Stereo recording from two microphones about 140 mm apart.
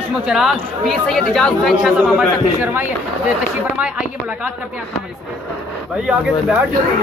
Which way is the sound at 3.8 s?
10° right (ahead or behind).